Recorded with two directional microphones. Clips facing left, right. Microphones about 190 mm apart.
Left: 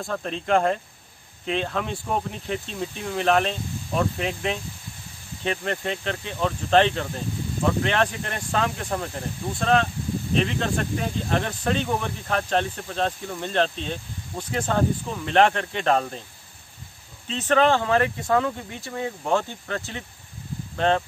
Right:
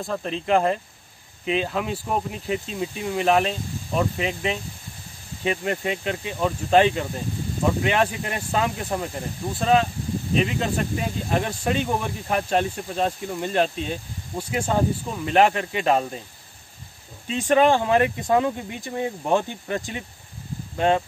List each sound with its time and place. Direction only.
0.0 s speech: centre (ahead or behind)
17.3 s speech: 10° right (ahead or behind)